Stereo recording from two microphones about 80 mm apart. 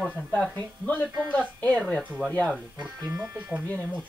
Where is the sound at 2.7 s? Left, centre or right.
Centre.